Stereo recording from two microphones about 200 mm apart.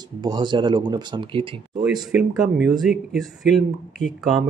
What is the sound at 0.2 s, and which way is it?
Speech, 20° right (ahead or behind).